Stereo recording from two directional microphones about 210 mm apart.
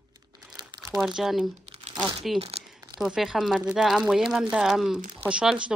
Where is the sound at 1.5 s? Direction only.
30° right (ahead or behind).